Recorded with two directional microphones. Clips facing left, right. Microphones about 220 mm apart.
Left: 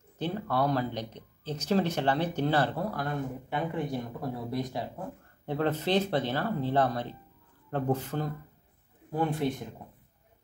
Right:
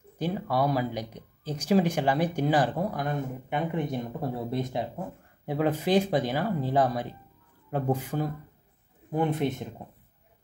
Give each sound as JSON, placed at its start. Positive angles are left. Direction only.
{"t": 0.2, "sound": "speech", "side_deg": -10}
{"t": 5.5, "sound": "speech", "side_deg": -10}